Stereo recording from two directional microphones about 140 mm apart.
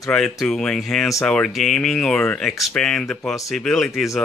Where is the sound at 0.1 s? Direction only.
5° left (ahead or behind).